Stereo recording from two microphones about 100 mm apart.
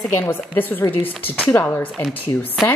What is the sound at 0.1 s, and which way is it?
Speech, 20° left (ahead or behind).